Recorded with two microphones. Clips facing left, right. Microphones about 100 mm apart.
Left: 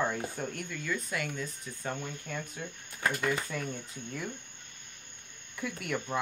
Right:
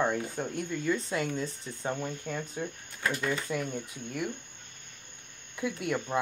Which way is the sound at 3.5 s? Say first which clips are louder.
Right 5 dB; 15° right (ahead or behind).